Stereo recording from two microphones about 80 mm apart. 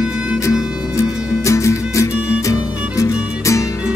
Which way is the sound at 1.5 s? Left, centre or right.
Left.